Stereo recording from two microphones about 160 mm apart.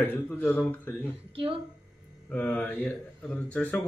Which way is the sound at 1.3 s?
35° right (ahead or behind).